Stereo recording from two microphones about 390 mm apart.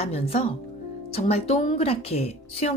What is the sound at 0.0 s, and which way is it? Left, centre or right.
Speech, centre.